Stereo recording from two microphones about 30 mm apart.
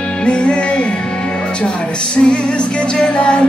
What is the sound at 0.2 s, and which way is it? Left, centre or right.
Music, left.